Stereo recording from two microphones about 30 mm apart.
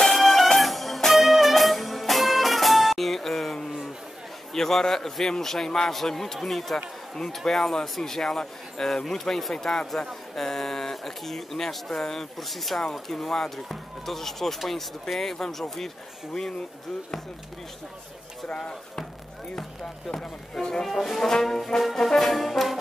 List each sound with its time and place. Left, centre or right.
0.0 s music: centre
4.6 s speech: centre
12.4 s brass instrument: centre
13.7 s speech: centre
14.6 s brass instrument: centre
15.6 s speech: centre
18.6 s speech: left
20.8 s brass instrument: centre
21.2 s speech: centre
21.9 s brass instrument: centre